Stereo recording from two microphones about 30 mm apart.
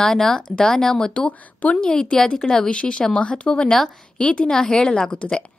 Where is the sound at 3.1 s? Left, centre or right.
Left.